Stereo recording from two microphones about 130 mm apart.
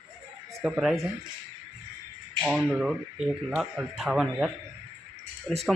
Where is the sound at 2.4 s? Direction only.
Centre (ahead or behind).